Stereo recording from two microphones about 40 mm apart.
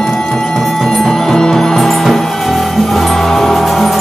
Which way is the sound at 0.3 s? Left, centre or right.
Centre.